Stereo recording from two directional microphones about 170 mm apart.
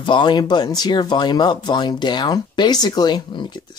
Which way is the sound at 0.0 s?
30° left (ahead or behind).